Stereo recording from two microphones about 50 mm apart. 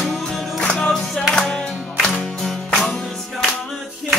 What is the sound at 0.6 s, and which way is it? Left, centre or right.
Music, centre.